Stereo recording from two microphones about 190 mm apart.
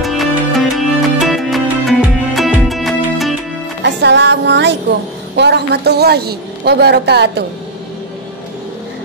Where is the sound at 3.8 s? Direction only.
65° right (ahead or behind).